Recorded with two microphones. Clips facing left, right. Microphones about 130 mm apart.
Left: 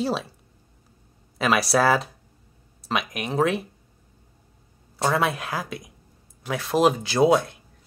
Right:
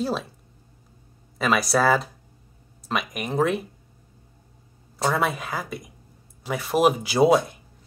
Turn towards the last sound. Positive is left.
turn(degrees=-5)  # may be behind; listen again after turning